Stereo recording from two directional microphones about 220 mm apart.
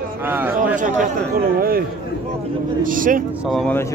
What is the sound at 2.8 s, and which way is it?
Speech, 40° right (ahead or behind).